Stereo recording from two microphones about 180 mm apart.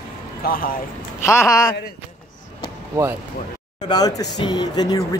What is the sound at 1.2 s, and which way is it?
Speech, 15° left (ahead or behind).